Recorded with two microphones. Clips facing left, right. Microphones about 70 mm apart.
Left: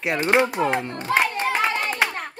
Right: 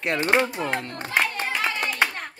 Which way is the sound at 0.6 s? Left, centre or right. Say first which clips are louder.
Left 5 dB; centre.